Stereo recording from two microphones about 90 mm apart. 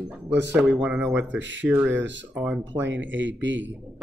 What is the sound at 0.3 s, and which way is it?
Speech, 20° right (ahead or behind).